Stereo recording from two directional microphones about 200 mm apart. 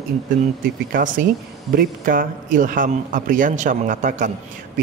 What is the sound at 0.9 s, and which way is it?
A man's voice, 40° right (ahead or behind).